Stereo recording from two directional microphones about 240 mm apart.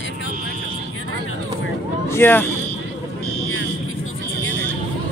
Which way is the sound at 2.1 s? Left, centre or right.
Centre.